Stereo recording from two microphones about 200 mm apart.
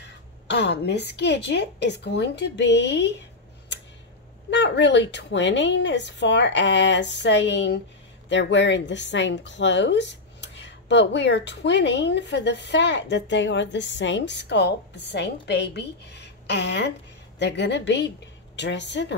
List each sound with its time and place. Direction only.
0.5 s speech: 60° left (ahead or behind)
4.5 s speech: 60° left (ahead or behind)